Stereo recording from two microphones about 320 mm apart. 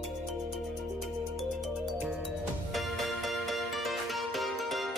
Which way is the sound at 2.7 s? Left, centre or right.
Centre.